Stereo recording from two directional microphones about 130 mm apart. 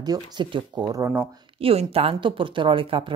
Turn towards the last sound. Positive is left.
turn(degrees=-40)  # may be behind; listen again after turning